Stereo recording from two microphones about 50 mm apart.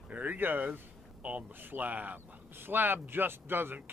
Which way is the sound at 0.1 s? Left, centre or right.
Right.